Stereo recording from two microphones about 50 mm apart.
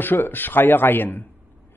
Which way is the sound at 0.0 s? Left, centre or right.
Left.